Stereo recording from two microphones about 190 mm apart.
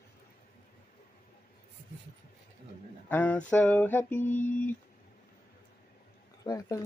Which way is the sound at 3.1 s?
10° left (ahead or behind).